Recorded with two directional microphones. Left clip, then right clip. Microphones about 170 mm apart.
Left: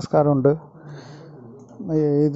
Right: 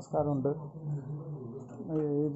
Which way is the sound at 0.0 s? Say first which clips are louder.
Left 13 dB; 55° left (ahead or behind).